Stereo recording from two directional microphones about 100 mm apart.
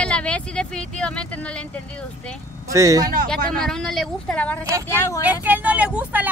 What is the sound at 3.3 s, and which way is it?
Speech, 5° left (ahead or behind).